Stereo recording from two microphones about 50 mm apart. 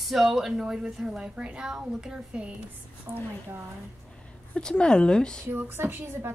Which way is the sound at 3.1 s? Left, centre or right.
Right.